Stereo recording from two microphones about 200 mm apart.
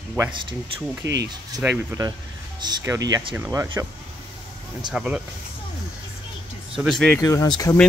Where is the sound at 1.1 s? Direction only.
15° right (ahead or behind).